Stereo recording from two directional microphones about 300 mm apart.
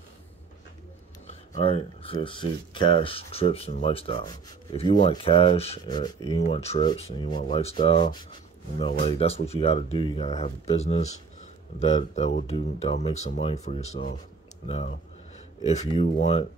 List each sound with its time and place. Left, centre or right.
1.2 s speech: centre